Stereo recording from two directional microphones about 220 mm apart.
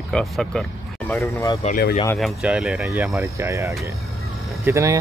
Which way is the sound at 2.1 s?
Centre (ahead or behind).